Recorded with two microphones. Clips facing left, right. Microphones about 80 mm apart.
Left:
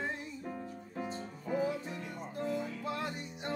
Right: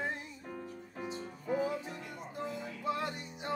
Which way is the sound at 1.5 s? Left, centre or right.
Centre.